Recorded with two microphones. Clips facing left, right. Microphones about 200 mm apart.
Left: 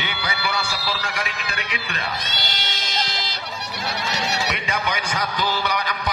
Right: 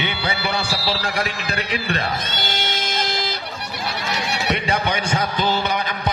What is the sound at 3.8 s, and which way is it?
Music, 55° right (ahead or behind).